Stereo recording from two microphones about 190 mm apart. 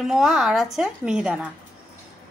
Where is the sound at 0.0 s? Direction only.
Centre (ahead or behind).